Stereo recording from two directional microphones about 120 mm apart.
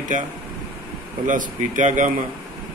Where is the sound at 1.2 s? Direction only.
90° right.